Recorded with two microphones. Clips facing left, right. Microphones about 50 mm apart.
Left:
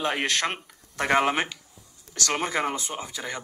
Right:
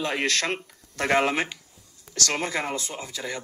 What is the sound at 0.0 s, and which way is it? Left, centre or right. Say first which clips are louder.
Speech: even; left.